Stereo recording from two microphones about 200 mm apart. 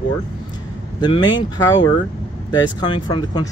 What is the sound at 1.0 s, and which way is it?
Speech, 25° left (ahead or behind).